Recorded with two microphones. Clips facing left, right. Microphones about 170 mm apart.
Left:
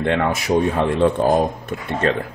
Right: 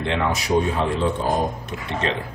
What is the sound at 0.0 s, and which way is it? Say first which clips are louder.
Speech: left 4 dB; 55° left (ahead or behind).